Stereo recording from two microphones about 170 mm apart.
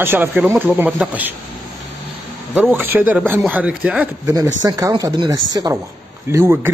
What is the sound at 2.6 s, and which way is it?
Speech, 10° right (ahead or behind).